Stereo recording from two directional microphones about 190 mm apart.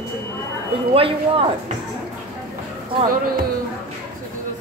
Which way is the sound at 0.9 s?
30° right (ahead or behind).